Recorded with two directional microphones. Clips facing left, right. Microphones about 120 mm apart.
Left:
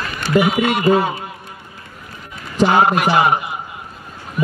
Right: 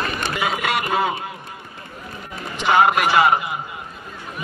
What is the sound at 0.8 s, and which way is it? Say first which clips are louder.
Speech: left 7 dB; 30° left (ahead or behind).